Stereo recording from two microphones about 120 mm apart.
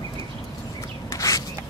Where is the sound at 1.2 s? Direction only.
30° left (ahead or behind).